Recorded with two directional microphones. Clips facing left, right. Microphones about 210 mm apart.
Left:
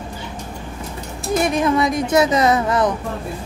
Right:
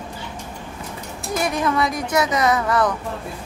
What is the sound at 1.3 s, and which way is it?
Speech, 20° left (ahead or behind).